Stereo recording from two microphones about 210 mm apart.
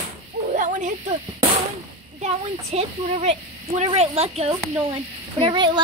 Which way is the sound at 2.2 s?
30° right (ahead or behind).